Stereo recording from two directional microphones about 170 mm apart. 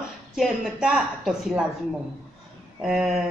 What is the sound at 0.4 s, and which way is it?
A woman's voice, 5° right (ahead or behind).